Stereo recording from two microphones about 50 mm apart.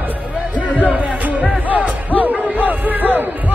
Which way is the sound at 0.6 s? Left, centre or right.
Left.